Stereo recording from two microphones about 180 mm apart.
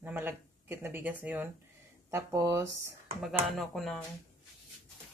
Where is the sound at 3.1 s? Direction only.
Centre (ahead or behind).